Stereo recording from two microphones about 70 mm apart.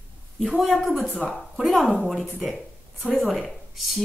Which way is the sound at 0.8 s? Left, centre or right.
Right.